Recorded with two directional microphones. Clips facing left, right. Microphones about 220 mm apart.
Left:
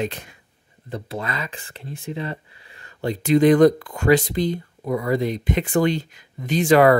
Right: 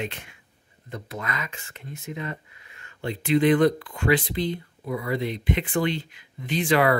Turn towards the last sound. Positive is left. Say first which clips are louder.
# left 6 dB
turn(degrees=45)  # may be behind; listen again after turning